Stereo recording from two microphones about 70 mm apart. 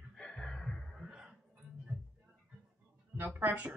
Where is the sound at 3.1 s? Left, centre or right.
Right.